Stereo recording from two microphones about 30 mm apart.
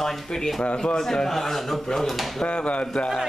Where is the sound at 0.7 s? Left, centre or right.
Left; by 2.3 s centre.